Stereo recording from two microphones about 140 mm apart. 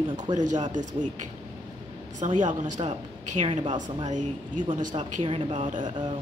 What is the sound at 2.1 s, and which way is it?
A woman's voice, 60° right (ahead or behind).